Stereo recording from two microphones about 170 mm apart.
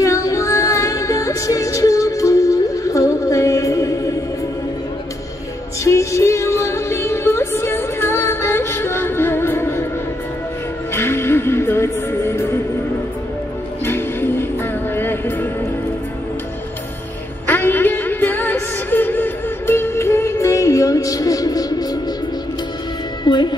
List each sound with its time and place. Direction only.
0.0 s music: 20° left (ahead or behind)
5.9 s music: 15° left (ahead or behind)
10.9 s music: 15° left (ahead or behind)
13.8 s music: 15° left (ahead or behind)
17.5 s a sound: 10° left (ahead or behind)
23.2 s music: 25° left (ahead or behind)